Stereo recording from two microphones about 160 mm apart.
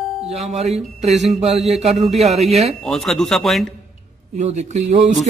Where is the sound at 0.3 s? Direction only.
40° right (ahead or behind).